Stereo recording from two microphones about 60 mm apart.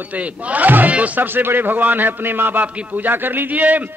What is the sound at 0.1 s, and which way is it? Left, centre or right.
A man's voice, right.